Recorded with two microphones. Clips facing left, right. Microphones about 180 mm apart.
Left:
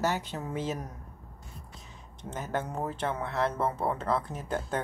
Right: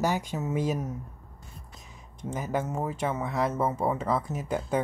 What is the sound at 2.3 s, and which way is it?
Speech, 10° right (ahead or behind).